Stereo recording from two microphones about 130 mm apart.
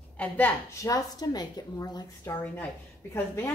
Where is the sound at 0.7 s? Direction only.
30° left (ahead or behind).